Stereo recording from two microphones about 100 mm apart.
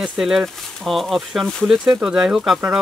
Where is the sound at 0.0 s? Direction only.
5° right (ahead or behind).